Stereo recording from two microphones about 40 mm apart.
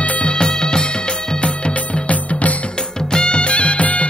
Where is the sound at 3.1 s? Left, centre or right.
Left.